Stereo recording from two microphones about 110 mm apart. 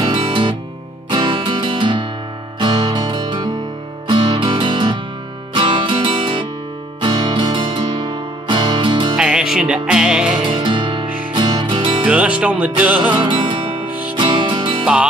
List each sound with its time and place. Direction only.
0.0 s music: 50° right (ahead or behind)
9.2 s music: 5° right (ahead or behind)
10.4 s music: 50° right (ahead or behind)
12.0 s music: 15° right (ahead or behind)
13.1 s music: 45° right (ahead or behind)